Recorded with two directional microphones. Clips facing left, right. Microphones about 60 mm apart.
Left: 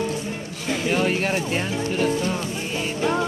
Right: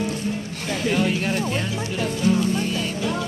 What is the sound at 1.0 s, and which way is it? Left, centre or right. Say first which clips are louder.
Vehicle: even; left.